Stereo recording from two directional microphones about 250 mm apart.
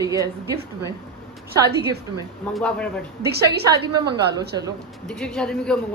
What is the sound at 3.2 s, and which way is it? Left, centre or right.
Speech, right.